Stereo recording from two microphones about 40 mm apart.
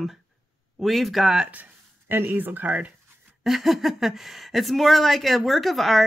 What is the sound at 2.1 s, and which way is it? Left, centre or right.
Speech, right.